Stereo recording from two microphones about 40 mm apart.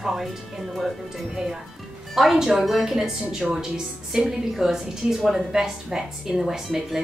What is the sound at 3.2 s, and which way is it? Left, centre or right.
Speech, right.